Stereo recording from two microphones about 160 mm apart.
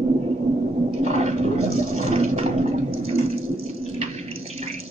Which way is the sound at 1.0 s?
40° right (ahead or behind).